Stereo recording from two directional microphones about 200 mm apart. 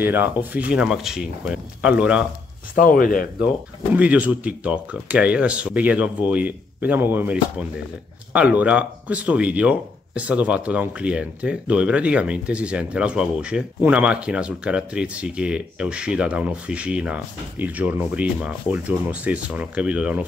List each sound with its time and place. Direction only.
0.0 s speech: 10° right (ahead or behind)
2.7 s speech: 45° left (ahead or behind)
3.9 s speech: 5° right (ahead or behind)